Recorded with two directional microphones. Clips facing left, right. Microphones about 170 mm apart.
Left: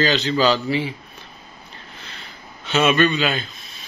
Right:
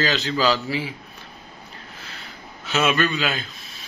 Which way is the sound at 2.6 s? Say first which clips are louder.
Left 4 dB; centre (ahead or behind).